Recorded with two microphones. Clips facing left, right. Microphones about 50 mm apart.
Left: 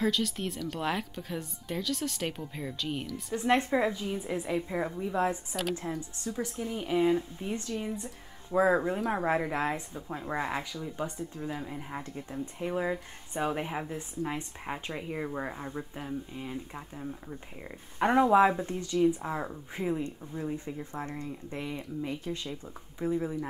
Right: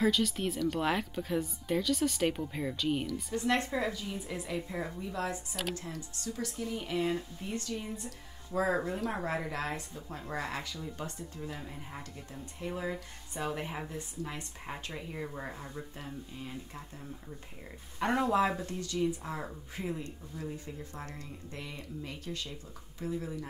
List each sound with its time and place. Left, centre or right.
0.0 s speech: centre
3.3 s speech: left